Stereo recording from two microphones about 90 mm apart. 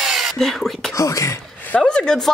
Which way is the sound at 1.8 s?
10° left (ahead or behind).